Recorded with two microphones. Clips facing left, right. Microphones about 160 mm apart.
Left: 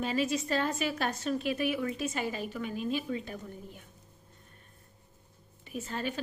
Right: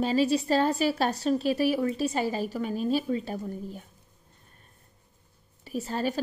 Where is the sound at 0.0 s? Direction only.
30° right (ahead or behind).